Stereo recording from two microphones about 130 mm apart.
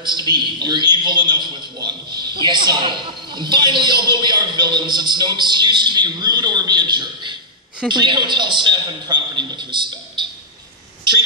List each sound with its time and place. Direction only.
0.0 s a man's voice: 35° right (ahead or behind)